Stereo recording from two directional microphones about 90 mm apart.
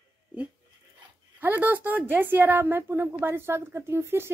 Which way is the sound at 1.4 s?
20° right (ahead or behind).